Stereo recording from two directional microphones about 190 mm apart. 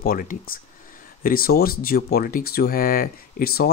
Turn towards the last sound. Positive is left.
turn(degrees=55)  # may be behind; listen again after turning